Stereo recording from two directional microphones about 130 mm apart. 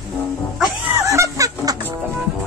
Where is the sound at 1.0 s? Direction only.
25° right (ahead or behind).